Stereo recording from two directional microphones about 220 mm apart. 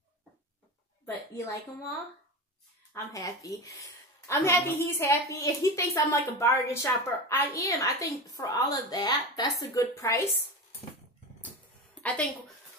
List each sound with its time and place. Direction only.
1.0 s a woman's voice: 15° left (ahead or behind)
2.9 s speech: 15° left (ahead or behind)
12.0 s a woman's voice: 5° left (ahead or behind)